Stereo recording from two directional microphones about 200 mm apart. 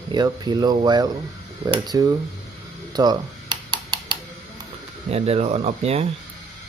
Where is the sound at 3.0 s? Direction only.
20° right (ahead or behind).